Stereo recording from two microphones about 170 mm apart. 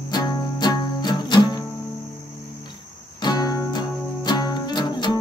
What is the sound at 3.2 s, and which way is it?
Music, 25° left (ahead or behind).